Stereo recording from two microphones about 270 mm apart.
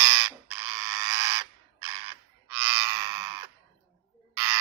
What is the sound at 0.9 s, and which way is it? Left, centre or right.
Bird, centre.